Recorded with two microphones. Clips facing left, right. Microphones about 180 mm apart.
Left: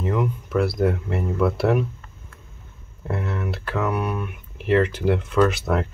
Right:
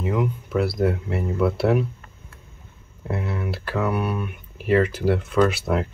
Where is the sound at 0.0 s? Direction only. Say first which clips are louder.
Even; 5° right (ahead or behind).